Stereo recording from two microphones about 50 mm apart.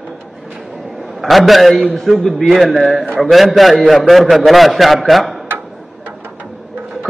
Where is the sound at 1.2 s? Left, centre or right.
Centre.